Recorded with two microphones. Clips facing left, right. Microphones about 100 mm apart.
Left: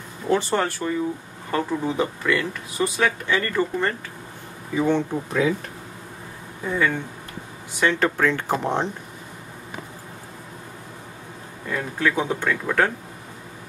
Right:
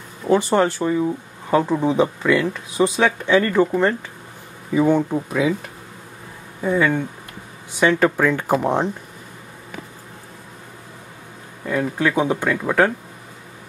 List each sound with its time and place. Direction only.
0.3 s speech: 15° right (ahead or behind)
6.6 s speech: 15° right (ahead or behind)
11.6 s speech: 10° right (ahead or behind)